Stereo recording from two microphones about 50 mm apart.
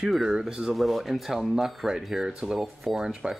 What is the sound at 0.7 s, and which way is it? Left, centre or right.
Speech, centre.